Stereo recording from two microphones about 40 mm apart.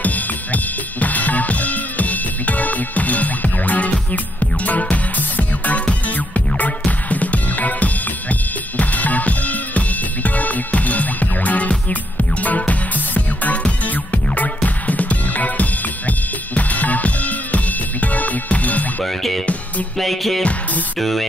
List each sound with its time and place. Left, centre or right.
0.0 s drum kit: left
4.1 s music: left
7.1 s drum kit: left
12.4 s music: left
19.0 s music: centre
21.0 s speech: centre